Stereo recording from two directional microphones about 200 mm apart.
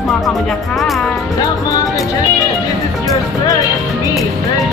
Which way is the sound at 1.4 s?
15° left (ahead or behind).